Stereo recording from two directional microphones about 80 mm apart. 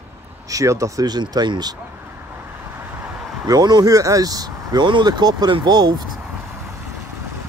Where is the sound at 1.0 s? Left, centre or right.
Right.